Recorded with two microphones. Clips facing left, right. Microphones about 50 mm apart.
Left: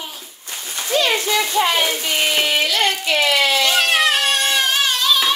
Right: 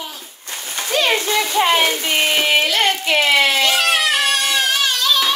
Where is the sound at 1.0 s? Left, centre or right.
Right.